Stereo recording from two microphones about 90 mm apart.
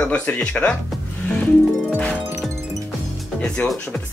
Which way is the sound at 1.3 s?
10° left (ahead or behind).